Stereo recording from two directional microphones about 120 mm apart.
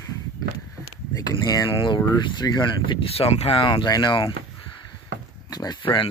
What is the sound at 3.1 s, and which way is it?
Speech, 55° left (ahead or behind).